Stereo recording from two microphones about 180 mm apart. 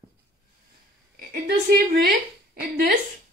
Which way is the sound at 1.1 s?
55° right (ahead or behind).